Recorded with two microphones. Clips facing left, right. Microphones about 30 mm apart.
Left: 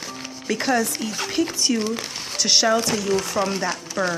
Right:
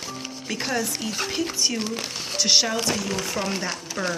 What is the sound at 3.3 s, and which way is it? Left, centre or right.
Speech, left.